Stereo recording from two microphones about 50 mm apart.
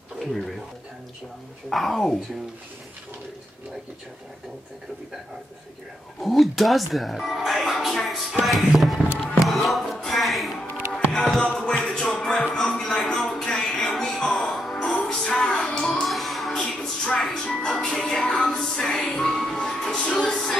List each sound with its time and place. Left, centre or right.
0.2 s speech: centre
1.7 s speech: centre
6.2 s speech: centre
10.9 s music: centre
11.4 s music: left
12.9 s a sound: centre
13.5 s music: centre
14.5 s music: centre
15.0 s music: centre
16.5 s speech: centre
18.4 s music: centre